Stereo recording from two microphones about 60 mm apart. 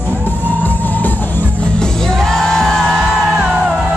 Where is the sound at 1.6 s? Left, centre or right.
Centre.